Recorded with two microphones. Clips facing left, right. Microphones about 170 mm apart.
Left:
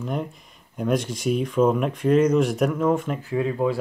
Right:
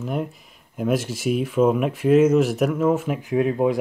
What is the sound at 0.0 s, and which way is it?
Speech, 5° right (ahead or behind).